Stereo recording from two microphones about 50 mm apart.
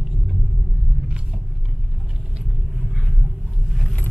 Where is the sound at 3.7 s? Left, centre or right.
Centre.